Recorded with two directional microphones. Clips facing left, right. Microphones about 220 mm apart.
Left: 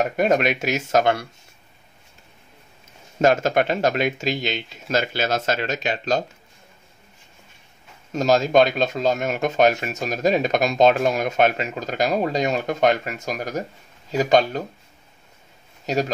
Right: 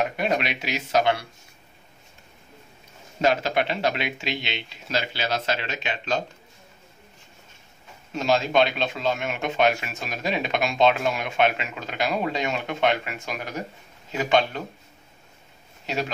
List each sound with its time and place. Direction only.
0.0 s speech: 45° left (ahead or behind)
3.2 s speech: 45° left (ahead or behind)
8.1 s speech: 40° left (ahead or behind)
15.9 s speech: 40° left (ahead or behind)